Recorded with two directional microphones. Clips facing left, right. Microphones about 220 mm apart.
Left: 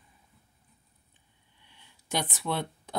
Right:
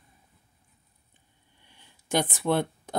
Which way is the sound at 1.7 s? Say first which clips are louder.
Right 6 dB; 50° right (ahead or behind).